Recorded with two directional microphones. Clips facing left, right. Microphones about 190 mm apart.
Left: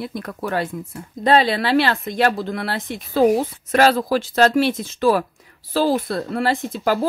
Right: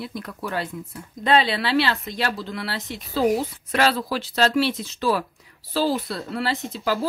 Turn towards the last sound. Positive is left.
turn(degrees=50)  # may be behind; listen again after turning